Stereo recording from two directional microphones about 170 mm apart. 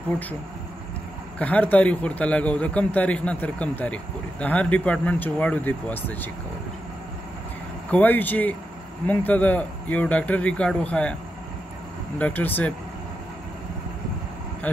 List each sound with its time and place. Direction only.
1.4 s a man's voice: 10° left (ahead or behind)
7.9 s a man's voice: 10° left (ahead or behind)
12.2 s a man's voice: 10° left (ahead or behind)